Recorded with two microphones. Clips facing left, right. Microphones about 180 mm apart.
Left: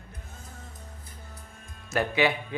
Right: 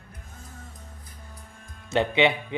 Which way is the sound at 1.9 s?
25° right (ahead or behind).